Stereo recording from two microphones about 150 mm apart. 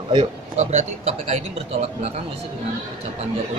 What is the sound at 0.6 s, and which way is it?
Speech, 50° right (ahead or behind).